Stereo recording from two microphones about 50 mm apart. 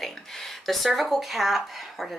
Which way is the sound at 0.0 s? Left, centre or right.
Centre.